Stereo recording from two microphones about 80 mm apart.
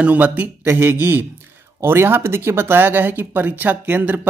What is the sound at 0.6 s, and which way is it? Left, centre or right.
Speech, right.